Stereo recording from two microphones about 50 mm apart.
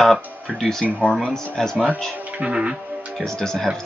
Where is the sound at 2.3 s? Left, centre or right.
Right.